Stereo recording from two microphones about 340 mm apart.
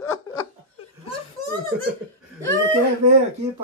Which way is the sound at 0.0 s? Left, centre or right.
Left.